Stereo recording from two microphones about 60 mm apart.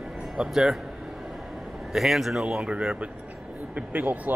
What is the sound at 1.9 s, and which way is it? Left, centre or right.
Speech, centre.